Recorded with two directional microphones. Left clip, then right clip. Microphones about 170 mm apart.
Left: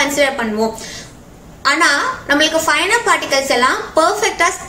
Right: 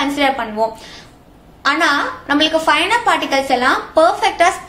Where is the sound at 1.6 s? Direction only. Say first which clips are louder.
Left 1 dB; 50° right (ahead or behind).